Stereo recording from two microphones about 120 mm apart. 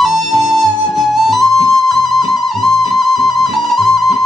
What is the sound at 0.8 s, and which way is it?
Flute, 60° left (ahead or behind).